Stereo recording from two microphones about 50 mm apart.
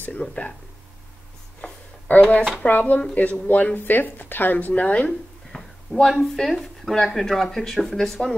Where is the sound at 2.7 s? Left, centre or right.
Left.